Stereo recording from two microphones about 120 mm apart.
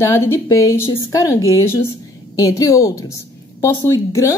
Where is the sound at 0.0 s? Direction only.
25° left (ahead or behind).